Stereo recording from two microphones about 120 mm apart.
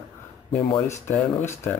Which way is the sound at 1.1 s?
20° left (ahead or behind).